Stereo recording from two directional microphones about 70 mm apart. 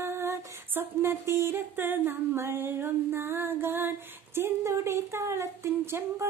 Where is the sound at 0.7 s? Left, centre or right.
Right.